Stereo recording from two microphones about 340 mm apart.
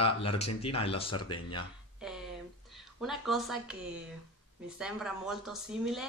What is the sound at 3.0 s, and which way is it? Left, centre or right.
Speech, centre.